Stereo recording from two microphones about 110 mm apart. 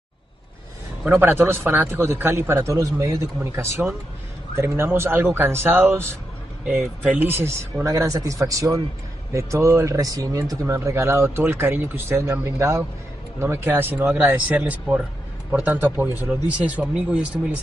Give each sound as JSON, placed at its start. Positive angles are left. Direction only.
{"t": 1.0, "sound": "speech", "side_deg": -20}